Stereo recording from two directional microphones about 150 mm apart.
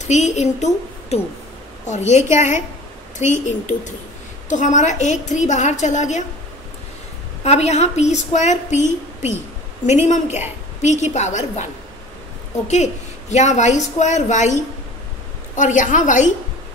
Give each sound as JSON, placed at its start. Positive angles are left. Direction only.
{"t": 0.0, "sound": "a woman's voice", "side_deg": 50}
{"t": 7.4, "sound": "a woman's voice", "side_deg": 45}
{"t": 12.6, "sound": "a woman's voice", "side_deg": 50}